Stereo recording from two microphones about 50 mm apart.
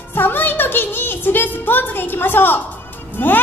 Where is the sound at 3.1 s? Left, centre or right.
Left.